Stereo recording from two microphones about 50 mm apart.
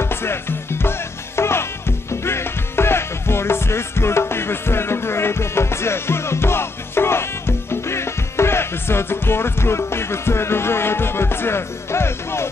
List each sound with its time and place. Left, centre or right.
0.0 s music: left